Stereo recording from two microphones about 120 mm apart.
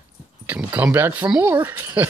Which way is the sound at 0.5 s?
15° right (ahead or behind).